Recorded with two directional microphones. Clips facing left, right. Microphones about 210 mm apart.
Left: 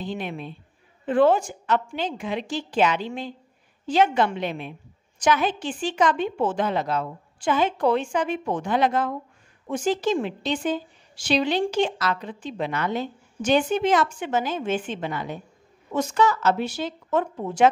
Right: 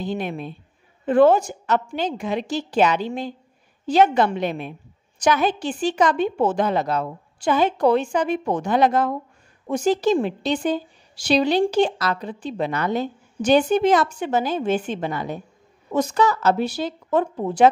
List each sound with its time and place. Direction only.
0.0 s a woman's voice: 40° right (ahead or behind)